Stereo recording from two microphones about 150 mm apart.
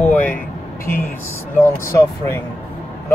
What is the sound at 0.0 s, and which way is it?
Vehicle, 10° left (ahead or behind).